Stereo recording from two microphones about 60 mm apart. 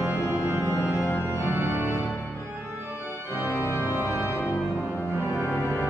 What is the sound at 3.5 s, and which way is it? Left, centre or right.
Organ, left.